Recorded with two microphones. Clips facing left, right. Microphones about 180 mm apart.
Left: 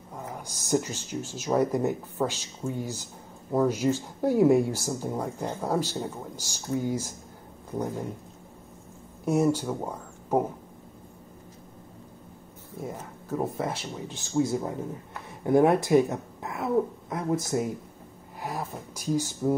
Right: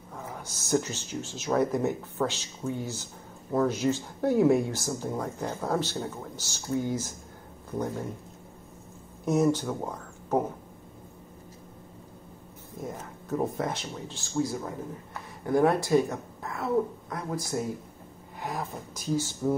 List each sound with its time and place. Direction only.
0.1 s speech: 15° left (ahead or behind)
9.2 s speech: 10° left (ahead or behind)
13.4 s speech: 5° left (ahead or behind)
14.1 s speech: 25° left (ahead or behind)
18.4 s speech: 10° left (ahead or behind)